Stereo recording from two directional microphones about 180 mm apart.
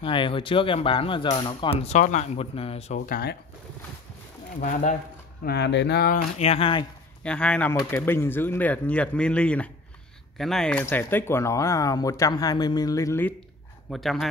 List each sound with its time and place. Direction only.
0.0 s speech: 30° left (ahead or behind)
3.1 s speech: 60° left (ahead or behind)
4.6 s speech: 45° left (ahead or behind)
5.4 s speech: 65° left (ahead or behind)
6.4 s speech: 35° left (ahead or behind)
7.2 s speech: 5° left (ahead or behind)
13.8 s a man's voice: centre (ahead or behind)